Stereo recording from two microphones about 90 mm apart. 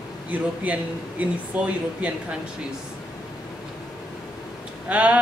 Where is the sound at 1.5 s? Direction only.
15° right (ahead or behind).